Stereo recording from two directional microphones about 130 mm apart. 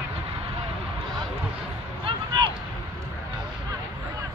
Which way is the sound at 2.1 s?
40° right (ahead or behind).